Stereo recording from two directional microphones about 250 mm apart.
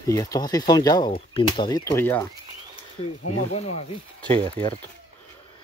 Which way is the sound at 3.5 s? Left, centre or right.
Left.